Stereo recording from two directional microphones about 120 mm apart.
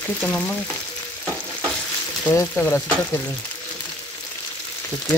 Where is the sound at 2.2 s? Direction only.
15° left (ahead or behind).